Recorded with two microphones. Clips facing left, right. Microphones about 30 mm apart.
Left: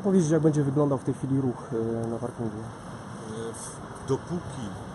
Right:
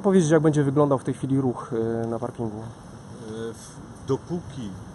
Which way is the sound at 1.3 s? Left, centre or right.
Right.